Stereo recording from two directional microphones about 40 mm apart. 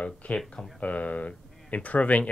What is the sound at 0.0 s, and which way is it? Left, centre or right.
Speech, left.